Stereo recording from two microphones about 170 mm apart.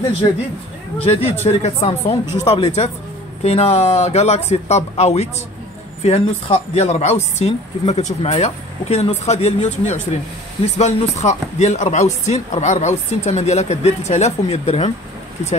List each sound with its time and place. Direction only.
0.2 s speech: 35° left (ahead or behind)